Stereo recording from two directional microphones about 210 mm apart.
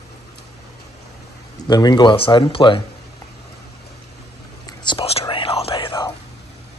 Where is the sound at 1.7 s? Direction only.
20° left (ahead or behind).